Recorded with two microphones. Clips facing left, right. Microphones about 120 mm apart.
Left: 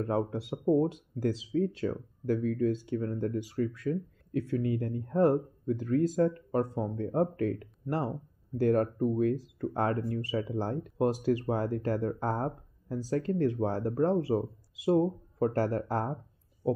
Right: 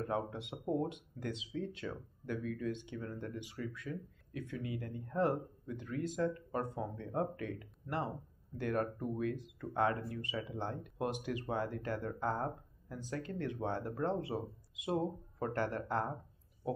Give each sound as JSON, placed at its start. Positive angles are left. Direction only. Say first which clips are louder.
{"t": 0.1, "sound": "speech", "louder": "left 7 dB", "side_deg": 35}